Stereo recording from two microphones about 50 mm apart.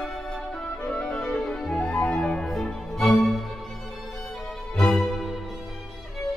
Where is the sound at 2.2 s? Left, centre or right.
Centre.